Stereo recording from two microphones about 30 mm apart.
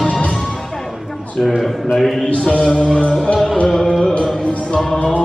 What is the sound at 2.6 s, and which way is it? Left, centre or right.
Music, left.